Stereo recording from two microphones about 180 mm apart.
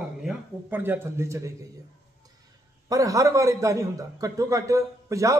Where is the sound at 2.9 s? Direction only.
20° right (ahead or behind).